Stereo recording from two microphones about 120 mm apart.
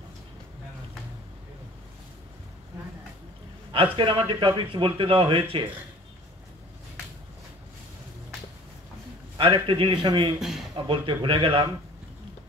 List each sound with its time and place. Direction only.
3.7 s a man's voice: 50° right (ahead or behind)
9.4 s a man's voice: 45° right (ahead or behind)
10.4 s speech: 5° right (ahead or behind)
10.9 s a man's voice: 45° right (ahead or behind)